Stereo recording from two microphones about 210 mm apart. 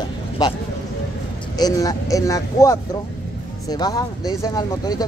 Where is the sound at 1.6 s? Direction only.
15° left (ahead or behind).